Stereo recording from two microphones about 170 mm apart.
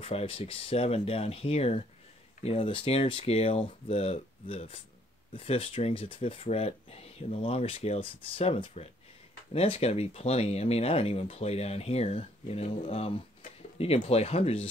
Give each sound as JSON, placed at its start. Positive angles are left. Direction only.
{"t": 0.0, "sound": "speech", "side_deg": 35}